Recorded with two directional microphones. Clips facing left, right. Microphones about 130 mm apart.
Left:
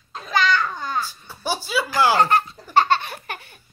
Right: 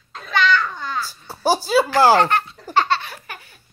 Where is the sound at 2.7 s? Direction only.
50° left (ahead or behind).